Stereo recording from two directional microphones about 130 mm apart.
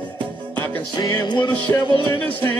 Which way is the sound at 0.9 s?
30° left (ahead or behind).